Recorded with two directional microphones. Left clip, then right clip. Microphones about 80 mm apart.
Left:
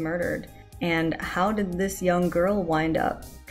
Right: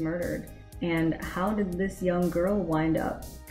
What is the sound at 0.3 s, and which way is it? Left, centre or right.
Speech, left.